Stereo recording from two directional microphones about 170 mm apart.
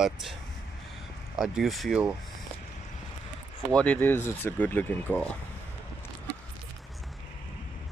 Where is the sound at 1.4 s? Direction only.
Centre (ahead or behind).